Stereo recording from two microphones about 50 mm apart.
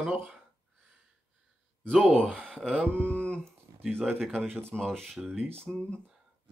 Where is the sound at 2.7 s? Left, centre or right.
Left.